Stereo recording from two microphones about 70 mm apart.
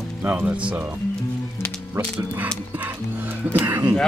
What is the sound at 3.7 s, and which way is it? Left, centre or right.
Speech, right.